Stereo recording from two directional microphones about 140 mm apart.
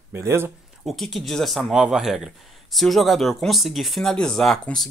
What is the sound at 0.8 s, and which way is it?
Speech, centre (ahead or behind).